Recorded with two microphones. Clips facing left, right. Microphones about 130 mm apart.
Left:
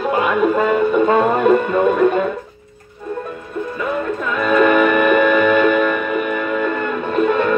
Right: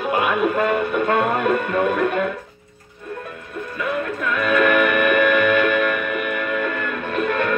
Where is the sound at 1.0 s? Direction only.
25° left (ahead or behind).